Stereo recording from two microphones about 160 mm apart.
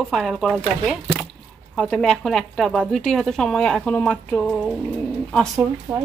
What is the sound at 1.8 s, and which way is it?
A woman's voice, 5° left (ahead or behind).